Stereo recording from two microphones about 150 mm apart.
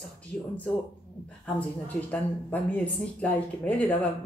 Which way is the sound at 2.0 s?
10° left (ahead or behind).